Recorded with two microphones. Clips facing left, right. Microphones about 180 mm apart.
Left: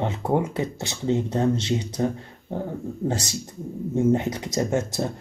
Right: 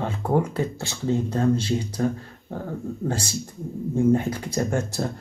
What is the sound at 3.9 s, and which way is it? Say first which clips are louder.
Speech: right 1 dB; 20° left (ahead or behind).